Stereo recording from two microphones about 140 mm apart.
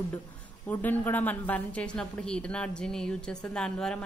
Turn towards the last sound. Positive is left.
turn(degrees=5)  # may be behind; listen again after turning